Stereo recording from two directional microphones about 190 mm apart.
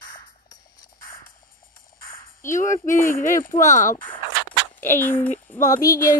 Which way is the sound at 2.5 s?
40° left (ahead or behind).